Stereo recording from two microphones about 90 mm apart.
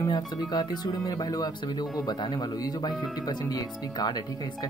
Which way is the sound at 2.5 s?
45° left (ahead or behind).